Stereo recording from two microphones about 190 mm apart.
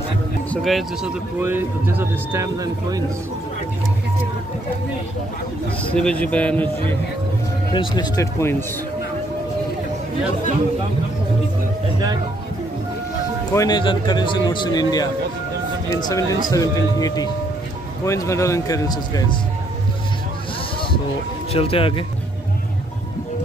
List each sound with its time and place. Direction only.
0.5 s speech: centre (ahead or behind)
1.4 s speech: 10° right (ahead or behind)
5.9 s speech: 5° left (ahead or behind)
7.7 s speech: 25° left (ahead or behind)
13.5 s speech: 20° left (ahead or behind)
21.5 s speech: 30° left (ahead or behind)